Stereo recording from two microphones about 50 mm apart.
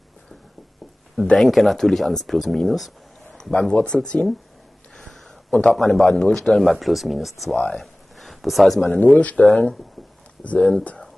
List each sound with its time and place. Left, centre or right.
1.3 s speech: centre
3.7 s speech: centre
4.9 s a sound: centre
5.5 s a man's voice: left
5.8 s a man's voice: centre
7.7 s a sound: centre
8.9 s speech: left